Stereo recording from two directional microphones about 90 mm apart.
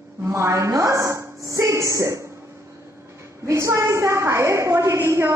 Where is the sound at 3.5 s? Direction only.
35° right (ahead or behind).